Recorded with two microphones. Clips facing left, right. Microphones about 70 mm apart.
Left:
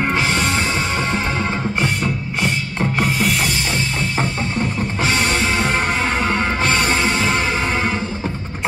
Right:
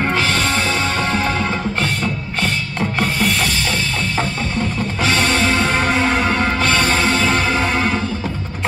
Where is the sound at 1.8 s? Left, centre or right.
Centre.